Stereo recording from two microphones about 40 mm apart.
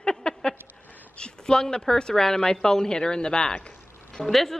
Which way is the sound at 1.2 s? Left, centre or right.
Left.